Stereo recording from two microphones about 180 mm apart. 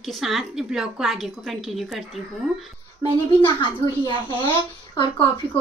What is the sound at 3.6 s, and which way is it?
A woman's voice, 30° left (ahead or behind).